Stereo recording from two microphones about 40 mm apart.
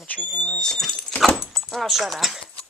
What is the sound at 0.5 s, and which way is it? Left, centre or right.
Speech, centre.